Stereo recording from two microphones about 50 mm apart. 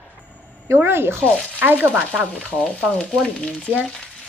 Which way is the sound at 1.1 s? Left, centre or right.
Centre.